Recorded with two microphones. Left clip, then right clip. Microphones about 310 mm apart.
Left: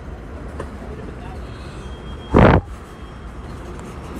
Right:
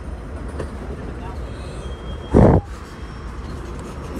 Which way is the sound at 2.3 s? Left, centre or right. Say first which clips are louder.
Left 2 dB; right.